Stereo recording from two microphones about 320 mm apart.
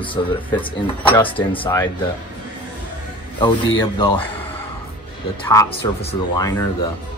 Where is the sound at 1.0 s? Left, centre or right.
Centre.